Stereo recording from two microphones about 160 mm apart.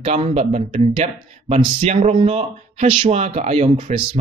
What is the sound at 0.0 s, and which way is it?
Speech, 35° right (ahead or behind).